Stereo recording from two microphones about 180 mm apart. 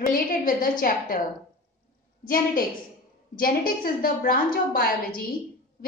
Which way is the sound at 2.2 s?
50° left (ahead or behind).